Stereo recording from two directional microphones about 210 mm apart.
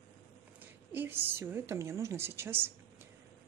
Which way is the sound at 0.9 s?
10° right (ahead or behind).